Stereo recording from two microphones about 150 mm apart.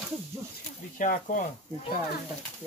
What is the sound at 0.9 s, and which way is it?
Speech, 60° left (ahead or behind).